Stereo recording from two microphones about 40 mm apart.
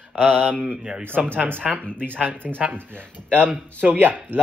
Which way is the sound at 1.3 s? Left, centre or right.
Right.